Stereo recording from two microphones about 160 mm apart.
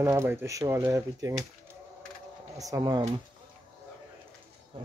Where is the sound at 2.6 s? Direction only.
20° right (ahead or behind).